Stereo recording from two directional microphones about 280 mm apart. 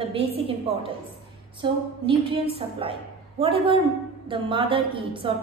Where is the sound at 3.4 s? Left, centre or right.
Centre.